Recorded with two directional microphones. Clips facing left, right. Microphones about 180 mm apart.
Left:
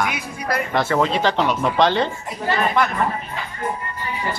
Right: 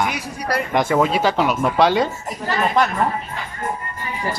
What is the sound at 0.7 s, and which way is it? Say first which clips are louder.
Speech: right 2 dB; 10° right (ahead or behind).